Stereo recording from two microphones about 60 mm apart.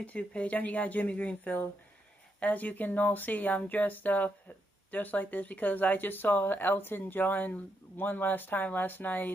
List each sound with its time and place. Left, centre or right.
0.0 s speech: left